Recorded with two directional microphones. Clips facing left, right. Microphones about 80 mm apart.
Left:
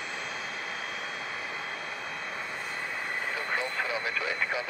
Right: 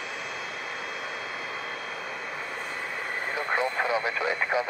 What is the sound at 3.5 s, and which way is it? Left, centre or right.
Vehicle, right.